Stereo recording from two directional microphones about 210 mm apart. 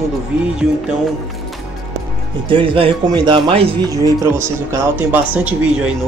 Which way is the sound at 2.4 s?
25° right (ahead or behind).